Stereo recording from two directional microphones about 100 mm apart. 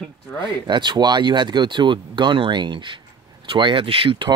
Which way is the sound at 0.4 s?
50° right (ahead or behind).